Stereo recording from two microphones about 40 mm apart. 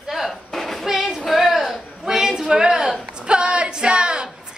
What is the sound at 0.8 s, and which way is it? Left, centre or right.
Female singing, centre.